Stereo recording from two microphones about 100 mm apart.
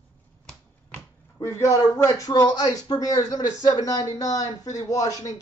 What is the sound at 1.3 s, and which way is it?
Speech, 30° left (ahead or behind).